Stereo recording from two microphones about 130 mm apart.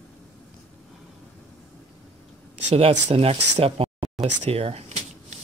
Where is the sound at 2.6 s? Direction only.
50° right (ahead or behind).